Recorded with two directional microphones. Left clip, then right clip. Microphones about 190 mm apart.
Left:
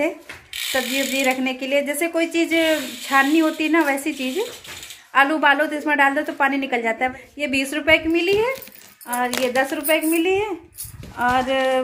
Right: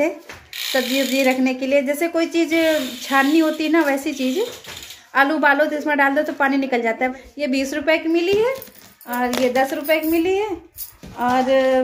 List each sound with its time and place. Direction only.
0.7 s a woman's voice: centre (ahead or behind)